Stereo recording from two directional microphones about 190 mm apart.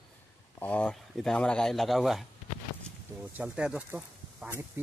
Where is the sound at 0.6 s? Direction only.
5° left (ahead or behind).